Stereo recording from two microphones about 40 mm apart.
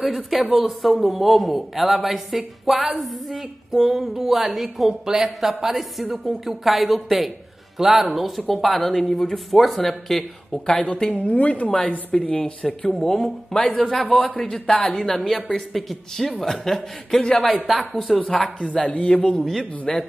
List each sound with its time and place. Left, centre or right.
0.0 s a woman's voice: centre
10.7 s speech: left
11.1 s a woman's voice: left
13.5 s speech: left
14.1 s speech: centre
14.7 s speech: left
15.0 s a woman's voice: centre
18.8 s speech: left